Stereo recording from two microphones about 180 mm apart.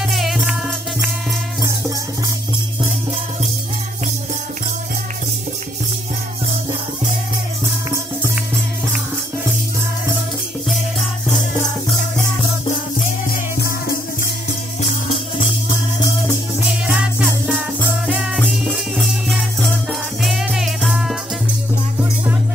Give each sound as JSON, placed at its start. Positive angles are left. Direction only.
{"t": 0.1, "sound": "music", "side_deg": 0}
{"t": 13.3, "sound": "music", "side_deg": 55}
{"t": 16.8, "sound": "music", "side_deg": -5}